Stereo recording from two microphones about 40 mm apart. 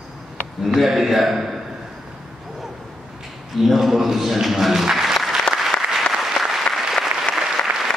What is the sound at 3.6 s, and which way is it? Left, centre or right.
Speech, centre.